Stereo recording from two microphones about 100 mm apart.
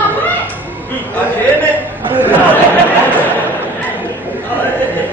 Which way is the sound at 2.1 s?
20° right (ahead or behind).